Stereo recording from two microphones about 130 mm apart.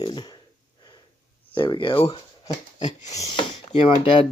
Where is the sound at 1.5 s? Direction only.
40° left (ahead or behind).